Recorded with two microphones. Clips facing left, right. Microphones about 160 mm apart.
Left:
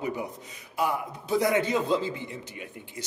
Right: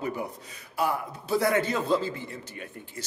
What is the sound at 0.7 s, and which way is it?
Speech, 15° left (ahead or behind).